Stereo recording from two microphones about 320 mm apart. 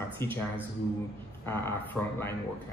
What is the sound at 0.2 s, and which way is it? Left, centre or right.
Speech, centre.